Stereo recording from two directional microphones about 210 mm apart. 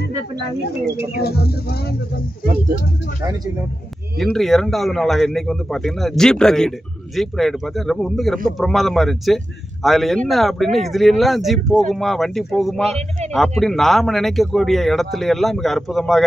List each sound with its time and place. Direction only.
1.2 s speech: 50° left (ahead or behind)
4.2 s speech: centre (ahead or behind)